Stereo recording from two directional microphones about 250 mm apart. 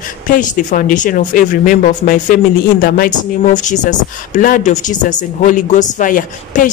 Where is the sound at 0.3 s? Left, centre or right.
Left.